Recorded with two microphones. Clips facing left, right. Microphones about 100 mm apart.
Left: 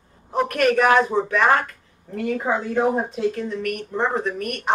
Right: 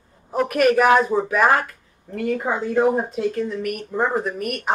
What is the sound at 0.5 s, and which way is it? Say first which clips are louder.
Speech: right 2 dB; 5° right (ahead or behind).